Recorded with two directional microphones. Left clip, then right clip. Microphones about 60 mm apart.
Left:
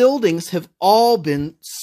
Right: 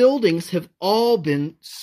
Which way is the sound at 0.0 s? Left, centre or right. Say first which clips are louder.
Left 1 dB; centre.